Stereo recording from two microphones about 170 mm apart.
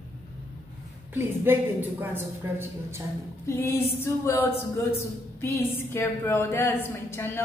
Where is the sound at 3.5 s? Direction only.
15° left (ahead or behind).